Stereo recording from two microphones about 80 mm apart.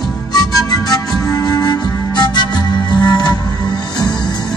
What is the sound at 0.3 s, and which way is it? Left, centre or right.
Music, left.